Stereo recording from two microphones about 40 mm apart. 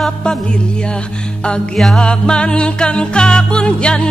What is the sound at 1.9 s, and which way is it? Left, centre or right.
Music, left.